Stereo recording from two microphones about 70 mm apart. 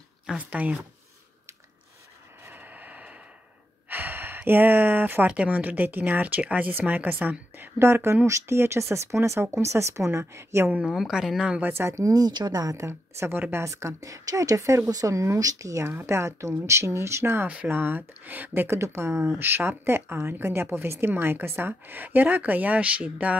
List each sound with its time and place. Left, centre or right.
0.4 s speech: right
2.5 s a sound: right
3.9 s speech: right
10.9 s speech: centre
11.9 s speech: right
12.7 s speech: right; by 23.3 s centre